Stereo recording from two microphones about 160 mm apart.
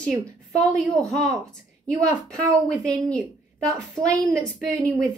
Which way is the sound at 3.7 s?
20° right (ahead or behind).